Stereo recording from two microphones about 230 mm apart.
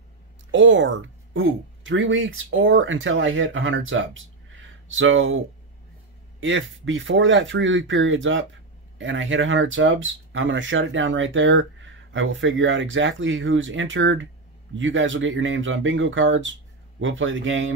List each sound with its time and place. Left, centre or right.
0.5 s speech: right
6.4 s speech: right